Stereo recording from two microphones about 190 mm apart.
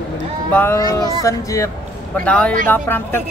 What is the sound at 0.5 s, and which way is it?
Speech, 10° left (ahead or behind).